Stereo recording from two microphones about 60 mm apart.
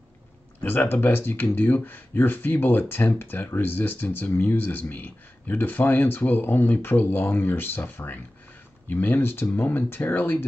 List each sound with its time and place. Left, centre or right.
0.6 s speech: left